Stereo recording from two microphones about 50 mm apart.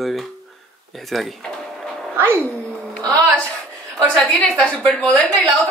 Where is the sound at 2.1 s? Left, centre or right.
Right.